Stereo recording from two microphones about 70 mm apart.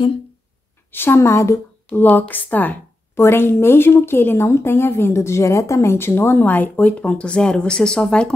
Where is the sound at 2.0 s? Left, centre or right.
Left.